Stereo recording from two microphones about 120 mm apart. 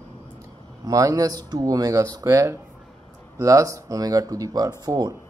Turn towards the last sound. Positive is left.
turn(degrees=-35)  # may be behind; listen again after turning